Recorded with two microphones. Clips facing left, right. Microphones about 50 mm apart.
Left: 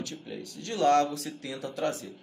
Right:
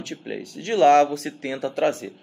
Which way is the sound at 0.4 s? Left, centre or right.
Right.